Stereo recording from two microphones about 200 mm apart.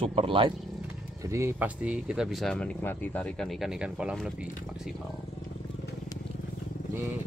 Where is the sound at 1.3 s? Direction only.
15° right (ahead or behind).